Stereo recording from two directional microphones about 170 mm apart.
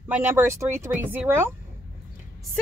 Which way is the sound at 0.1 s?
10° right (ahead or behind).